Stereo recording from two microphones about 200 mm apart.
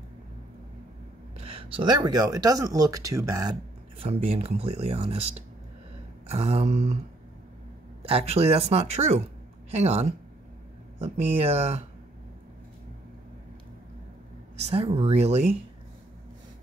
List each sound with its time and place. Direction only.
1.4 s speech: 30° right (ahead or behind)
4.0 s speech: 30° right (ahead or behind)
6.2 s speech: 30° right (ahead or behind)
8.0 s speech: 30° right (ahead or behind)
14.6 s speech: 30° right (ahead or behind)